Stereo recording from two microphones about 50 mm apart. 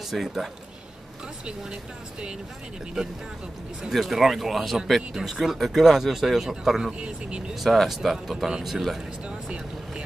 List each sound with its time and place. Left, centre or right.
0.1 s speech: centre
1.4 s speech: centre
3.9 s speech: centre
6.9 s speech: right
7.5 s speech: centre